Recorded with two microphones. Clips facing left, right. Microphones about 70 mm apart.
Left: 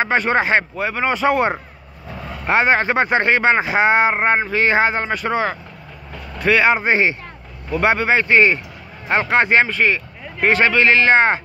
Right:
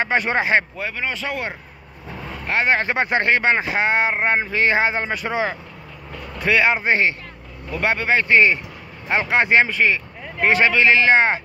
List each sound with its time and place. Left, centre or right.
0.0 s speech: centre
1.0 s a man's voice: left
2.4 s speech: centre